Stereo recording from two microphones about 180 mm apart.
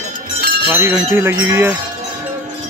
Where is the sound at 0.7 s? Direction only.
15° right (ahead or behind).